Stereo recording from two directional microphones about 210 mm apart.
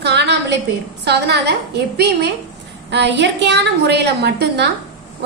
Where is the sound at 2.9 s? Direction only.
55° right (ahead or behind).